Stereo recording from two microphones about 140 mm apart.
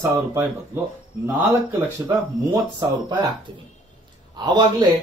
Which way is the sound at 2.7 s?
30° right (ahead or behind).